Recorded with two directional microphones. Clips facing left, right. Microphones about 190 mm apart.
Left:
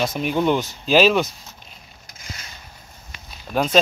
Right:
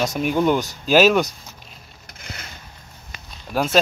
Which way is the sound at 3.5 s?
5° right (ahead or behind).